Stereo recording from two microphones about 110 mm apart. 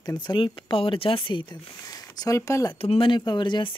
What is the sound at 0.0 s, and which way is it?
Speech, 40° left (ahead or behind).